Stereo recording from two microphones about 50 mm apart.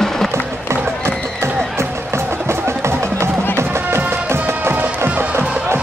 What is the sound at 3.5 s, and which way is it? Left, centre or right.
Music, right.